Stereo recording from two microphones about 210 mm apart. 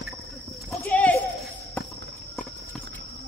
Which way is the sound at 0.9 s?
5° left (ahead or behind).